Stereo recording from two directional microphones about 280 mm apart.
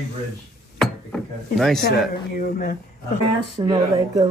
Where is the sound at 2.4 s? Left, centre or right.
Left.